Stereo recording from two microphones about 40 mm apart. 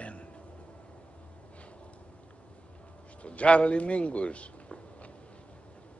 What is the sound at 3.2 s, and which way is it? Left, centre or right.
Speech, left.